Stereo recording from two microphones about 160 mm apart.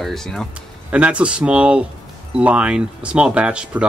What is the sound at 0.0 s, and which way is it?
Speech, centre (ahead or behind).